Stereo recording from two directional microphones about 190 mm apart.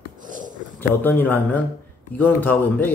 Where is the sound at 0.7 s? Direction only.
10° left (ahead or behind).